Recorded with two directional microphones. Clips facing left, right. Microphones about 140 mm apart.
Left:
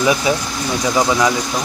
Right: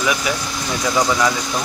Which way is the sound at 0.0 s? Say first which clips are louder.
Left 5 dB; 25° left (ahead or behind).